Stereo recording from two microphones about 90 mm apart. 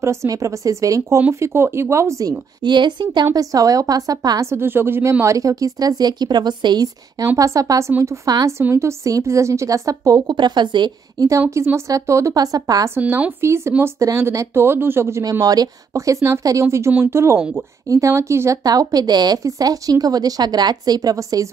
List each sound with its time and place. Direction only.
0.0 s a woman's voice: 30° right (ahead or behind)
2.6 s a woman's voice: 55° right (ahead or behind)
3.3 s a woman's voice: 40° right (ahead or behind)
4.5 s speech: 25° right (ahead or behind)
5.2 s a woman's voice: 35° right (ahead or behind); by 6.9 s 55° right (ahead or behind)
7.3 s a woman's voice: 40° right (ahead or behind)
10.2 s a woman's voice: 55° right (ahead or behind)
11.5 s a woman's voice: 30° right (ahead or behind)
12.9 s speech: 25° right (ahead or behind)
15.4 s a woman's voice: 45° right (ahead or behind)
18.6 s a woman's voice: 45° right (ahead or behind)